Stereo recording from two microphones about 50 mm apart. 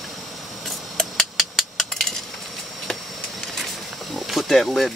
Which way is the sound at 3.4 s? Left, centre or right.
Centre.